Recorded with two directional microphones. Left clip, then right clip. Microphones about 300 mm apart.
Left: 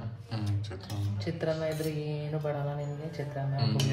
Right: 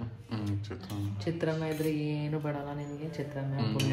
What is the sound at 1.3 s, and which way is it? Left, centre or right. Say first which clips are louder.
Mantra: left 2 dB; centre.